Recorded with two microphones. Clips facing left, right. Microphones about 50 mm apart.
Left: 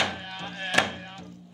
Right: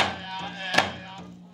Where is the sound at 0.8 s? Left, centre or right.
Centre.